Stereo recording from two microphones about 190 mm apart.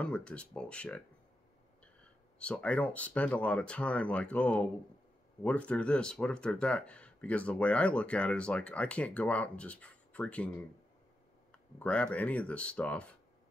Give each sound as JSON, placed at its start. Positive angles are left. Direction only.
{"t": 0.0, "sound": "speech", "side_deg": 5}
{"t": 2.3, "sound": "speech", "side_deg": 5}
{"t": 11.5, "sound": "speech", "side_deg": 5}